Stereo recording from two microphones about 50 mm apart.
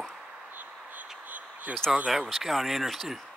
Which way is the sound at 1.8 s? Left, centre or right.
Centre.